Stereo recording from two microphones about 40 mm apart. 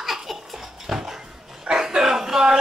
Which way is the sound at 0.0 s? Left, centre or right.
Centre.